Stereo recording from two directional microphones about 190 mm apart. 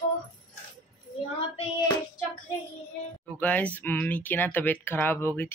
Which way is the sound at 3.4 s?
5° left (ahead or behind).